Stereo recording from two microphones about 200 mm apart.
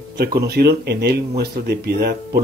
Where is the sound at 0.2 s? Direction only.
55° right (ahead or behind).